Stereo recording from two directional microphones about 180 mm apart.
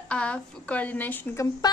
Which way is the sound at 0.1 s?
5° left (ahead or behind).